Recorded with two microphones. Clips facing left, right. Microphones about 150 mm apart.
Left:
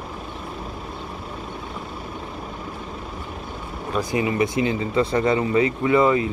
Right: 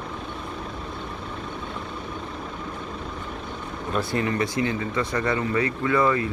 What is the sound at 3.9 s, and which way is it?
Speech, 15° left (ahead or behind).